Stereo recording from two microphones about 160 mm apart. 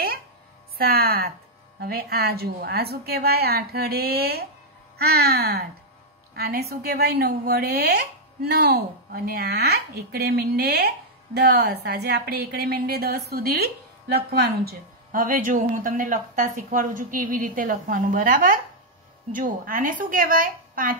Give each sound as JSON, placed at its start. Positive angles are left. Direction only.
{"t": 0.7, "sound": "a woman's voice", "side_deg": -70}
{"t": 1.8, "sound": "a woman's voice", "side_deg": -85}